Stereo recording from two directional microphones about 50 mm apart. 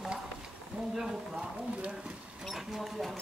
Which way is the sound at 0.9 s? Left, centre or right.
Centre.